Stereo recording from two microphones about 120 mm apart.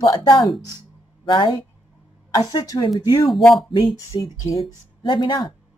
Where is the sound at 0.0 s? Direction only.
35° left (ahead or behind).